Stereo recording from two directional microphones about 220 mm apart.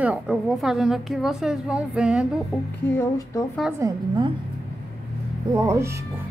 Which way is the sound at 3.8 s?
15° right (ahead or behind).